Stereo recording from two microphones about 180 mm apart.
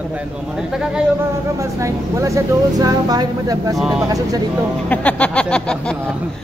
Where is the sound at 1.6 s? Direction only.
15° right (ahead or behind).